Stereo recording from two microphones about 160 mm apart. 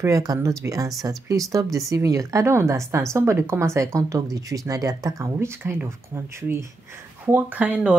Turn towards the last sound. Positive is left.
turn(degrees=-10)  # may be behind; listen again after turning